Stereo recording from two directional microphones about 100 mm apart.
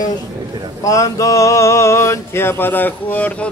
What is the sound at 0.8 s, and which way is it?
Male singing, 35° left (ahead or behind).